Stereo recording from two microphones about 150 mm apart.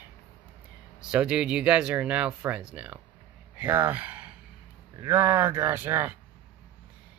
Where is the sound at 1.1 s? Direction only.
5° right (ahead or behind).